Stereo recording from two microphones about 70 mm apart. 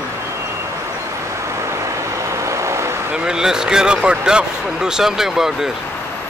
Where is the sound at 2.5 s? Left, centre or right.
Right.